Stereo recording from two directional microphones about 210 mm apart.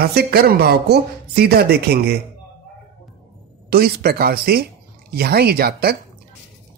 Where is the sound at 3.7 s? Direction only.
45° right (ahead or behind).